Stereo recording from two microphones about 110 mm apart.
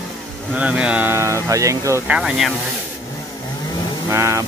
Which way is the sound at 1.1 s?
25° right (ahead or behind).